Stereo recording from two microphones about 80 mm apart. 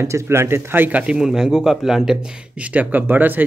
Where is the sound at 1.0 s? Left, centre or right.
Centre.